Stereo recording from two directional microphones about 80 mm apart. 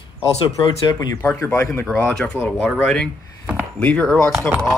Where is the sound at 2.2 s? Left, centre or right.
Centre.